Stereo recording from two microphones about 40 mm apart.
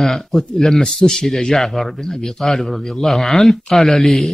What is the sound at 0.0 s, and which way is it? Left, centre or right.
A man's voice, centre.